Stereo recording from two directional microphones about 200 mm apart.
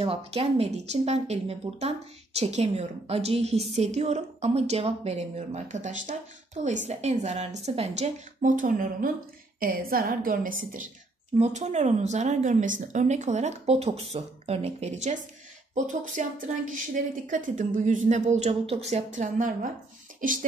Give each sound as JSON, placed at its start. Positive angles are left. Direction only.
{"t": 0.0, "sound": "a woman's voice", "side_deg": -30}